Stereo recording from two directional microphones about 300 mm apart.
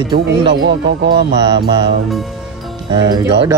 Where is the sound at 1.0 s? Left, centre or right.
Centre.